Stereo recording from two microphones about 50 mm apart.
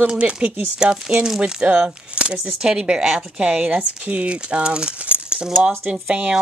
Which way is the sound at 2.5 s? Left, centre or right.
Centre.